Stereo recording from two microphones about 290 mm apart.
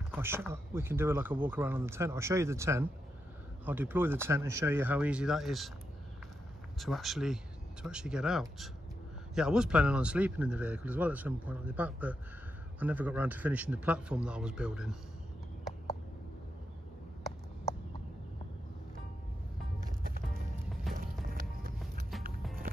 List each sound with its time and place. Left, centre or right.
0.1 s speech: centre
6.8 s speech: centre
20.9 s music: centre
21.3 s music: right